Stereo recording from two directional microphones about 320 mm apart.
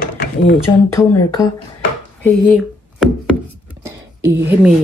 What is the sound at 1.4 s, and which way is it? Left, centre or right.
Speech, centre.